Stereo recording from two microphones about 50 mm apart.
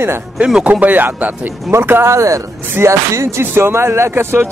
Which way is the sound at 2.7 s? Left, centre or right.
Right.